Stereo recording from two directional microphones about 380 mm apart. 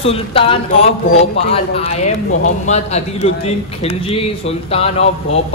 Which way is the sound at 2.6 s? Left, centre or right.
Centre.